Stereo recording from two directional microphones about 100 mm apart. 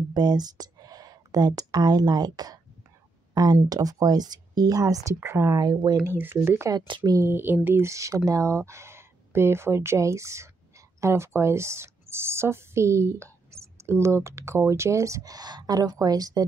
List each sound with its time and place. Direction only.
0.1 s speech: 45° right (ahead or behind)
3.6 s speech: 40° right (ahead or behind)
5.6 s speech: 40° right (ahead or behind)
6.0 s speech: 25° right (ahead or behind)
6.9 s speech: 50° right (ahead or behind)
7.2 s speech: 20° right (ahead or behind); by 16.4 s 40° right (ahead or behind)